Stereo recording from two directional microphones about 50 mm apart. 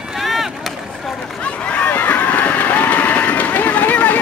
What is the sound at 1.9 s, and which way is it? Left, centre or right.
Run, left.